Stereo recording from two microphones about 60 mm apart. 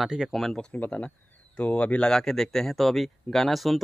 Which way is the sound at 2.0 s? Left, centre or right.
Centre.